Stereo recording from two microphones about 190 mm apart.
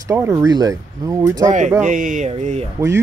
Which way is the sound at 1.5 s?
40° right (ahead or behind).